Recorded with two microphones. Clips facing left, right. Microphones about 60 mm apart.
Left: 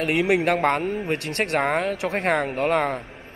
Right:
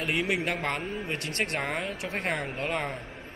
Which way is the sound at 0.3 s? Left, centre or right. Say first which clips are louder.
Left 9 dB; left.